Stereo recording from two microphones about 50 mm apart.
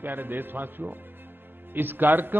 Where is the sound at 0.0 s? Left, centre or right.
Right.